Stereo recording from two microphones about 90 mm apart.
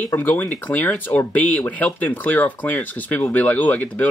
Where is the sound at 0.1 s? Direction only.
25° left (ahead or behind).